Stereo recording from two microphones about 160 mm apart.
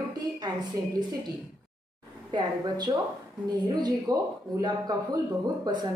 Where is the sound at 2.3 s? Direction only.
25° right (ahead or behind).